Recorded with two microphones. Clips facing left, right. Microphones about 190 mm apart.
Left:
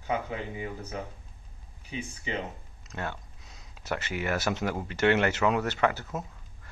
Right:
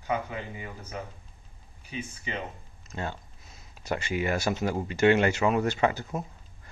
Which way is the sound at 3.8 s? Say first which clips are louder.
Right 3 dB; 15° right (ahead or behind).